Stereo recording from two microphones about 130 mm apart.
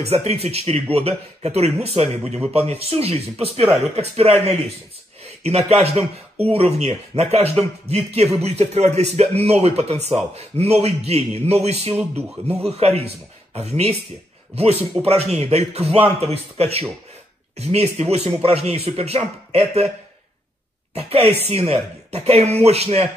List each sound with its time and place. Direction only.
0.0 s a man's voice: 55° right (ahead or behind)
11.9 s speech: 15° right (ahead or behind)
12.6 s a man's voice: 55° right (ahead or behind)
20.9 s a man's voice: 50° right (ahead or behind)